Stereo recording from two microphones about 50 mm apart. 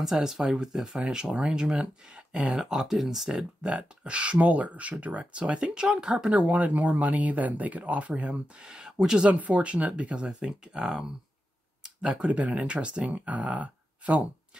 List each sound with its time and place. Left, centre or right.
0.0 s speech: centre
3.6 s speech: right
6.5 s speech: right
8.2 s speech: centre
11.8 s a sound: centre
12.3 s speech: right